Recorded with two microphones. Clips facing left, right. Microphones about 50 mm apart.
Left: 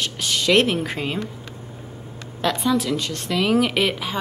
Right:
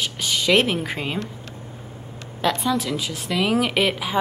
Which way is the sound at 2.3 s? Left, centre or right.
Centre.